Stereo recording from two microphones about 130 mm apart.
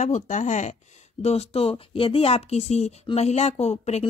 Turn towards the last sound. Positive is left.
turn(degrees=55)  # may be behind; listen again after turning